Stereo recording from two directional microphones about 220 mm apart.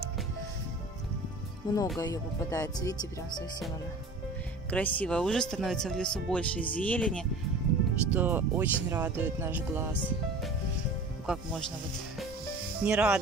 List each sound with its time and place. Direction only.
1.6 s speech: 20° left (ahead or behind)
4.6 s speech: 5° left (ahead or behind)
8.1 s speech: 10° right (ahead or behind)
12.8 s speech: 5° right (ahead or behind)